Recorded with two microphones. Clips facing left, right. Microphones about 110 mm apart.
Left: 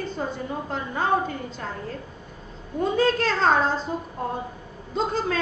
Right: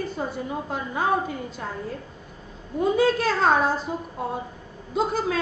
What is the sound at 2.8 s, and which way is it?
A woman's voice, 10° right (ahead or behind).